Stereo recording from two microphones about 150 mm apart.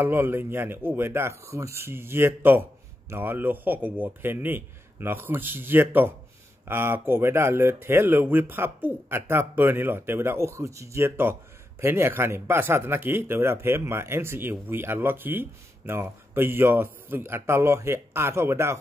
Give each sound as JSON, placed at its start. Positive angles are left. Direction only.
{"t": 0.0, "sound": "speech", "side_deg": -15}